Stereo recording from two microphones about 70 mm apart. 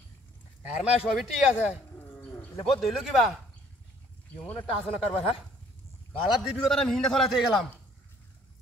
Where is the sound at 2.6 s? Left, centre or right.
Centre.